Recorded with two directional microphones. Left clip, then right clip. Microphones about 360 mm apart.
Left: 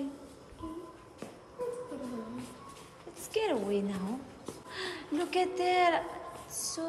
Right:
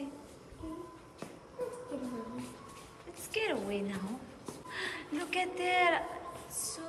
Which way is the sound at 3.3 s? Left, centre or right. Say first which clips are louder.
Left 3 dB; centre.